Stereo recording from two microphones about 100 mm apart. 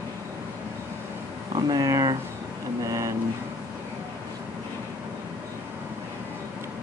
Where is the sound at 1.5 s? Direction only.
40° right (ahead or behind).